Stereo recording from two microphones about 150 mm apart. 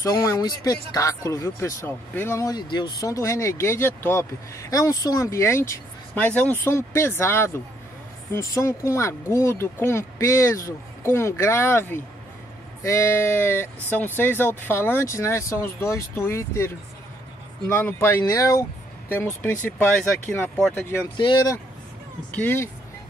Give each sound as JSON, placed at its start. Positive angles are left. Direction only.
{"t": 0.0, "sound": "speech", "side_deg": 25}
{"t": 21.2, "sound": "speech", "side_deg": 30}
{"t": 22.3, "sound": "speech", "side_deg": 15}